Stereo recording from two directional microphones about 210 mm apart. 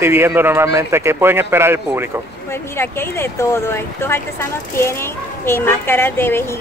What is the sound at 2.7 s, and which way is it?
A woman's voice, 10° left (ahead or behind).